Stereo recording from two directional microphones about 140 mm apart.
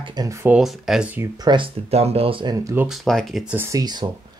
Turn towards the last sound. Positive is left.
turn(degrees=-25)  # may be behind; listen again after turning